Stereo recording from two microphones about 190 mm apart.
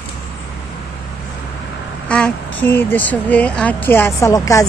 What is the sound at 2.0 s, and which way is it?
Speech, 5° left (ahead or behind).